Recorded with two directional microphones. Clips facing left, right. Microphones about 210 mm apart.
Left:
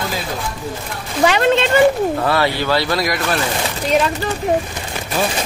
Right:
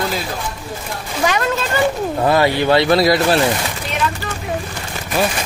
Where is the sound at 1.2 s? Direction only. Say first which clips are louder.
Left 5 dB; 30° left (ahead or behind).